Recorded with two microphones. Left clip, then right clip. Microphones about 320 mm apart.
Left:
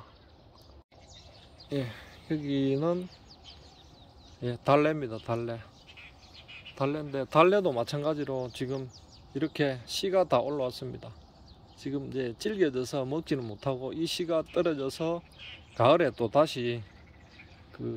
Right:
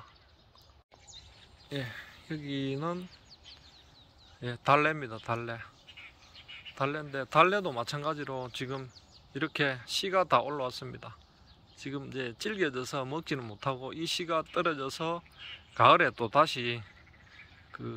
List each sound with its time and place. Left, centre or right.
1.7 s speech: centre
4.4 s speech: centre
5.9 s bird: left
6.7 s speech: centre